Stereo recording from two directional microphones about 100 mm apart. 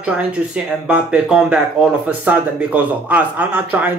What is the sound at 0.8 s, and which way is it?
Speech, 10° right (ahead or behind).